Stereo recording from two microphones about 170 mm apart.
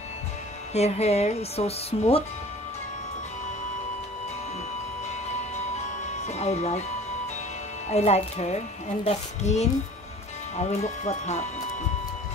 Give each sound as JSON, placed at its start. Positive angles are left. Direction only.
{"t": 0.7, "sound": "a woman's voice", "side_deg": 40}
{"t": 6.2, "sound": "a woman's voice", "side_deg": 40}
{"t": 7.9, "sound": "a woman's voice", "side_deg": 40}